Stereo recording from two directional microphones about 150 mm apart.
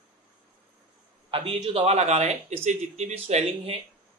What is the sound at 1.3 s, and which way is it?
Speech, 35° right (ahead or behind).